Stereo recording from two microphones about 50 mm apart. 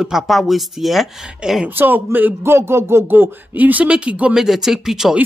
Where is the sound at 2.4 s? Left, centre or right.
Right.